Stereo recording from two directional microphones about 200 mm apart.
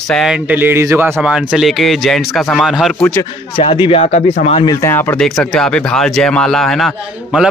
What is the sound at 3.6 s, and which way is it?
Speech, 30° left (ahead or behind).